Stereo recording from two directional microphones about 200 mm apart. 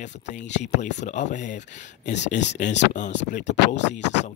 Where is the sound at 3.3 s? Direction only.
35° left (ahead or behind).